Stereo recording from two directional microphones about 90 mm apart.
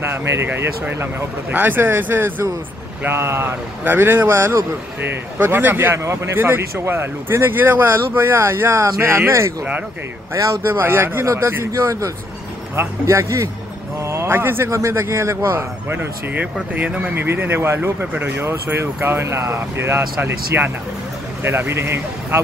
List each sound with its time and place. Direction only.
0.0 s a man's voice: 30° right (ahead or behind)
14.0 s a sound: 30° right (ahead or behind)
14.7 s a man's voice: 35° right (ahead or behind)